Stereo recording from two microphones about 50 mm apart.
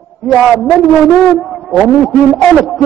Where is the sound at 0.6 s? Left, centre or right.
Centre.